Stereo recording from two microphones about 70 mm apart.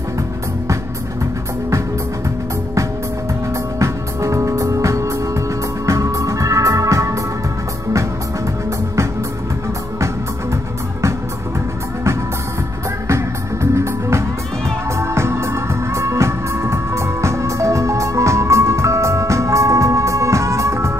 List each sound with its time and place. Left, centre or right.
3.8 s music: right
10.5 s music: right
13.1 s music: right